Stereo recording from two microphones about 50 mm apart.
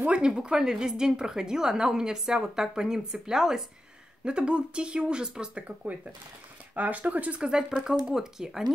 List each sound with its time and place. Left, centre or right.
0.0 s a woman's voice: centre
6.7 s speech: right; by 8.7 s centre